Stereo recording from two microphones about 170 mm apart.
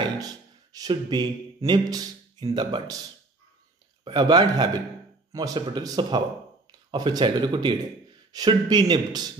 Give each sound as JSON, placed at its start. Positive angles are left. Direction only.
{"t": 0.0, "sound": "speech", "side_deg": -20}
{"t": 4.0, "sound": "speech", "side_deg": -25}